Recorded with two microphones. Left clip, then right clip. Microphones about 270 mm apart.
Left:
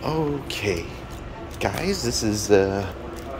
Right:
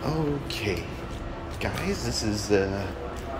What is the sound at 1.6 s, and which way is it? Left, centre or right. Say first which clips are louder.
Speech: left 6 dB; centre.